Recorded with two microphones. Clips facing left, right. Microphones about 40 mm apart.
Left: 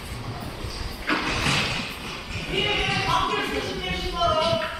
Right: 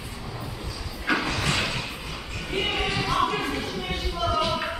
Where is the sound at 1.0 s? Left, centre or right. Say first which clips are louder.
Even; centre.